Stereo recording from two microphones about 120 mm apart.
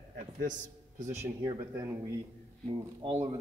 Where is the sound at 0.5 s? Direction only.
90° right.